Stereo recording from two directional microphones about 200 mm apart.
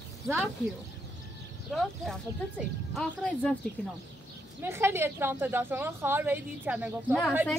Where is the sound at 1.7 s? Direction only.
Centre (ahead or behind).